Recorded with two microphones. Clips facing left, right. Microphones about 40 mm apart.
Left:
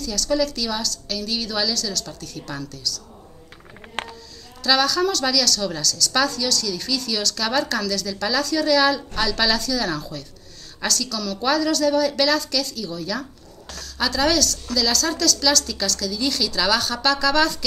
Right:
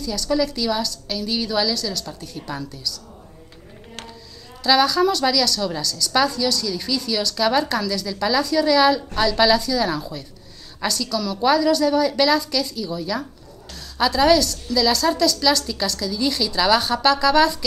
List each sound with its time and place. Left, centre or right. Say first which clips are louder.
0.0 s a woman's voice: right 1 dB; centre
4.6 s a woman's voice: right 3 dB; centre